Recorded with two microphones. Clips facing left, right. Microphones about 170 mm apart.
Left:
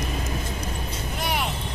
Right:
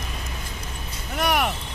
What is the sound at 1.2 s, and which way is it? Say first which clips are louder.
Vehicle: right 6 dB; 75° right (ahead or behind).